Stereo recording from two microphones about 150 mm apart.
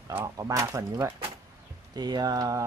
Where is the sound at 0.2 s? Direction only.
25° right (ahead or behind).